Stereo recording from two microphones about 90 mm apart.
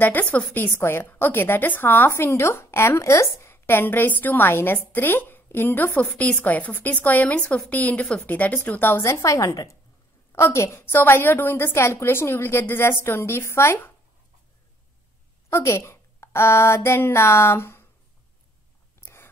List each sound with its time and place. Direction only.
0.0 s a woman's voice: 20° left (ahead or behind)
15.5 s a child's voice: 30° left (ahead or behind)
18.9 s writing: 30° left (ahead or behind)